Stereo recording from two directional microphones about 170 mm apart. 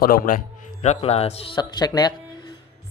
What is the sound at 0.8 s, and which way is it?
Speech, 40° left (ahead or behind).